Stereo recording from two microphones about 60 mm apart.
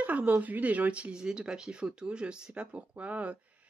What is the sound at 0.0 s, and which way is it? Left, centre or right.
Speech, right.